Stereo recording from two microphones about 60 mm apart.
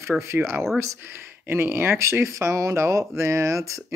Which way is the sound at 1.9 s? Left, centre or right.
Right.